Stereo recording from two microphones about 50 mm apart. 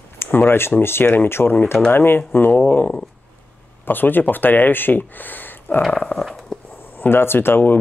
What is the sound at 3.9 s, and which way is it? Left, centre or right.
Speech, left.